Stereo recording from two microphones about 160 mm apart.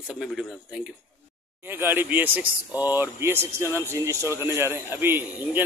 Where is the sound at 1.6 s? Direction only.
15° right (ahead or behind).